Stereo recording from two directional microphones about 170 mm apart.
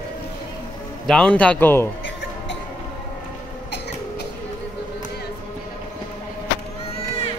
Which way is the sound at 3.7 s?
80° left.